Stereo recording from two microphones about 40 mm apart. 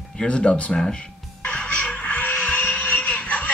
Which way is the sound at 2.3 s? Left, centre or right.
Left.